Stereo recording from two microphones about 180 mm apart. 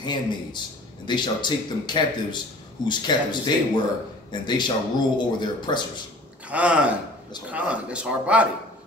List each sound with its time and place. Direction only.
0.0 s speech: 25° left (ahead or behind)
6.5 s speech: 5° right (ahead or behind)